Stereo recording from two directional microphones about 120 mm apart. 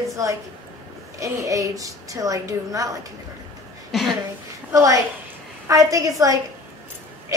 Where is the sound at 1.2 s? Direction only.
25° right (ahead or behind).